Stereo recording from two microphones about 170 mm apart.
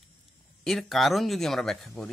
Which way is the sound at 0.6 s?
Centre (ahead or behind).